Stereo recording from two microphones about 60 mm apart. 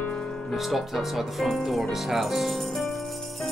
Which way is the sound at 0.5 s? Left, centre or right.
Centre.